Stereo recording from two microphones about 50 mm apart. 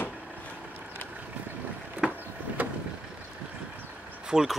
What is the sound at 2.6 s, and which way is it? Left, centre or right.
Vehicle, right.